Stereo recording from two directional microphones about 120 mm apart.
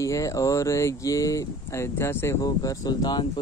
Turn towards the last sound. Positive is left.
turn(degrees=35)  # may be behind; listen again after turning